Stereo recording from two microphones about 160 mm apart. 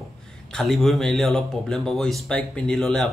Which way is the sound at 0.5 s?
Centre (ahead or behind).